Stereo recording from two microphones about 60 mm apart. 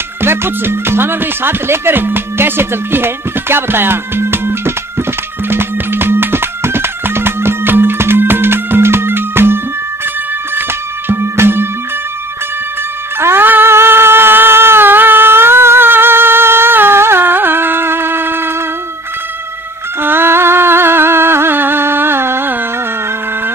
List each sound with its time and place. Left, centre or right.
0.2 s speech: right
5.5 s music: right
11.1 s music: right
13.2 s a sound: right
20.0 s music: right